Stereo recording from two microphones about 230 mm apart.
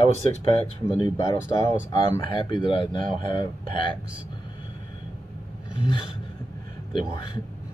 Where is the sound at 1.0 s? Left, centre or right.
Centre.